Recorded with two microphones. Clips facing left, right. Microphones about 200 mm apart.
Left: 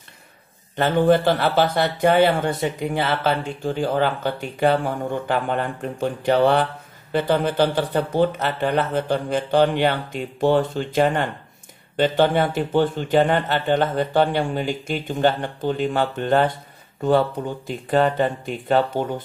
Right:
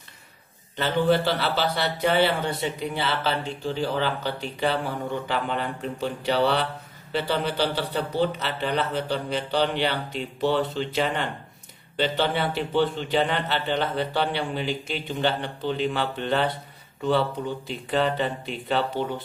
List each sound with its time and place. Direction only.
0.7 s a man's voice: 50° left (ahead or behind)